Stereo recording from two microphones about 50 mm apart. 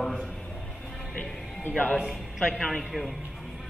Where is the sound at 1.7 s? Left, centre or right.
Left.